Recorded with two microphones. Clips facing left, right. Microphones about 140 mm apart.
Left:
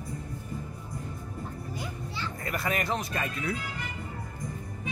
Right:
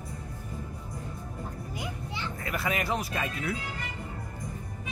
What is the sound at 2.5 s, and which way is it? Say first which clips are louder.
Speech: even; centre (ahead or behind).